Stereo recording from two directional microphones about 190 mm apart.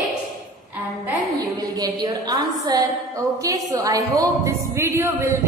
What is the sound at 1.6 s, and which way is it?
A woman's voice, 20° right (ahead or behind).